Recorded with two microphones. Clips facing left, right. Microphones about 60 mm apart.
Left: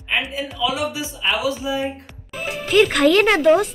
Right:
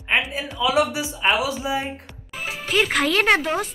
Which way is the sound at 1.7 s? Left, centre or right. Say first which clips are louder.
Left 1 dB; centre.